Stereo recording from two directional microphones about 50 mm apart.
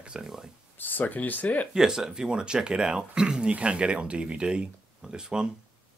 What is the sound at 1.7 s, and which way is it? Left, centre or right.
Speech, centre.